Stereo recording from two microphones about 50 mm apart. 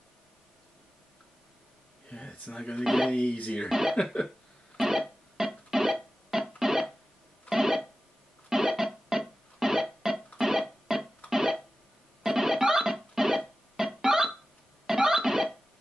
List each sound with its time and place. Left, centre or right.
2.0 s a sound: centre
2.5 s speech: centre
2.8 s speech: centre
3.1 s speech: left
3.6 s speech: centre
3.9 s cough: centre
4.7 s music: centre